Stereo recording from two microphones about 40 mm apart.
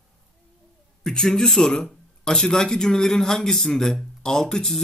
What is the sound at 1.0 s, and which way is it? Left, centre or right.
Speech, centre.